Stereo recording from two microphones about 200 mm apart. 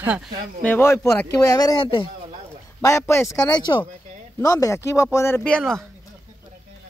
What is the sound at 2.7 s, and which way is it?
Speech, 15° left (ahead or behind).